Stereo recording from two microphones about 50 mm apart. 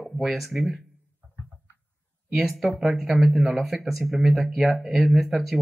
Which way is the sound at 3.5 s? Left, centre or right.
Centre.